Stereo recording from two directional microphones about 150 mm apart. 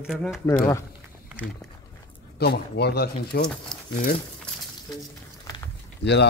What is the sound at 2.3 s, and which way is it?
Speech, 90° left.